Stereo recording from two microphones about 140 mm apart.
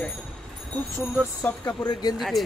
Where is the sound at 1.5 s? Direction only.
15° left (ahead or behind).